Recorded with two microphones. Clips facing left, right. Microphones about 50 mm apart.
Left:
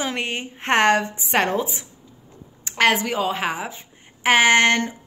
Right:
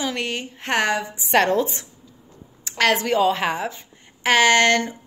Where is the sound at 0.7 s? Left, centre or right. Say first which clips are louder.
Left 4 dB; left.